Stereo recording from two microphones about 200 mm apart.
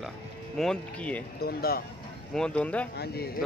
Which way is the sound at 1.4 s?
50° left (ahead or behind).